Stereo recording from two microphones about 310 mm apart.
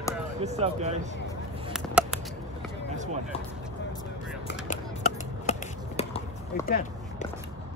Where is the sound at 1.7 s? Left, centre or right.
Centre.